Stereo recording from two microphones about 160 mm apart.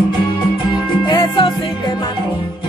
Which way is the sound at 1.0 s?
30° left (ahead or behind).